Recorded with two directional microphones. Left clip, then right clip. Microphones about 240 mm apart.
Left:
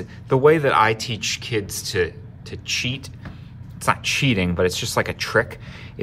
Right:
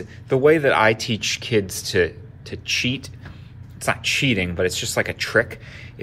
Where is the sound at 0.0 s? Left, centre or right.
Centre.